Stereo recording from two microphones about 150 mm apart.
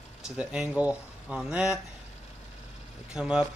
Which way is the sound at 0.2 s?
5° right (ahead or behind).